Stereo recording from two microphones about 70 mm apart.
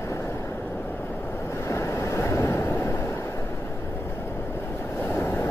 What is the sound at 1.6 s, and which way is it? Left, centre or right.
Waves, left.